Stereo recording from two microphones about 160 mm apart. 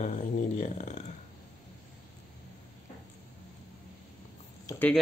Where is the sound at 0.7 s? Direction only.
45° left (ahead or behind).